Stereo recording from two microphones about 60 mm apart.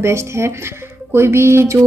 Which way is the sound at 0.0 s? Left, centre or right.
Right.